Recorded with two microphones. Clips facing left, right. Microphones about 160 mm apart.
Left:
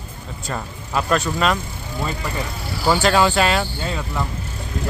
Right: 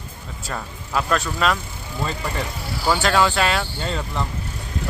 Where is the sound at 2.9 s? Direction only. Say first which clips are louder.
Left 2 dB; centre (ahead or behind).